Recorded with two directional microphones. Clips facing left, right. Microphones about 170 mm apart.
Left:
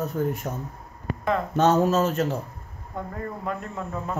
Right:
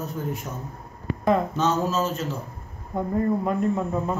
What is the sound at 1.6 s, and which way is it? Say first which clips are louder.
Speech: left 4 dB; 60° left (ahead or behind).